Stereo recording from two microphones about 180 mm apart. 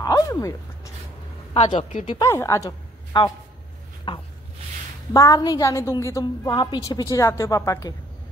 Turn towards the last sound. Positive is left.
turn(degrees=20)  # may be behind; listen again after turning